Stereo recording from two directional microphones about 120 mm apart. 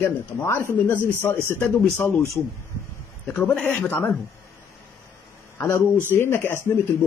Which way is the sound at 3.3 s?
10° left (ahead or behind).